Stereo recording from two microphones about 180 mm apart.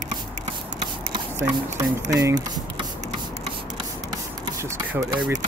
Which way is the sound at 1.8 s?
20° right (ahead or behind).